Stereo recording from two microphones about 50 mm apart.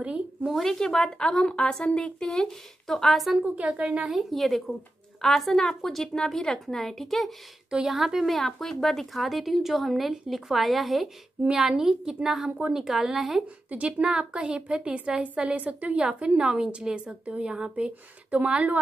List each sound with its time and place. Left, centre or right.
0.0 s a sound: right
0.7 s a woman's voice: centre
2.2 s a woman's voice: centre
3.5 s a woman's voice: right
4.1 s a woman's voice: centre
7.7 s a woman's voice: centre
14.1 s a woman's voice: right
18.3 s a woman's voice: right